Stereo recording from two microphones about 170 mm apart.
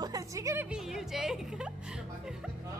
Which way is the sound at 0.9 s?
Centre (ahead or behind).